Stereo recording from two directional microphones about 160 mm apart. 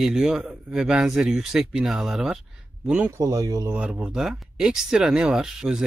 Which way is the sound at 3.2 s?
20° right (ahead or behind).